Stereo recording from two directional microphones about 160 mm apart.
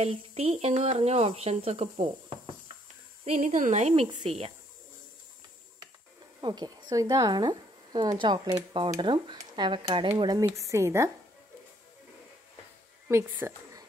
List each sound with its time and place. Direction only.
0.0 s a woman's voice: 40° right (ahead or behind)
6.4 s a woman's voice: 25° right (ahead or behind)
13.1 s a woman's voice: 15° right (ahead or behind)